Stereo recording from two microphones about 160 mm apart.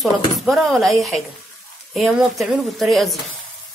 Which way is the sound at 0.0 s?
Centre (ahead or behind).